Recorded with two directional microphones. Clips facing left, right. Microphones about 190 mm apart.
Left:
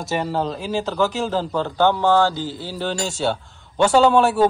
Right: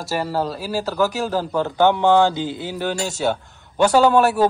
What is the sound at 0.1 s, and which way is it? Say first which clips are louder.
A man's voice: even; 5° right (ahead or behind).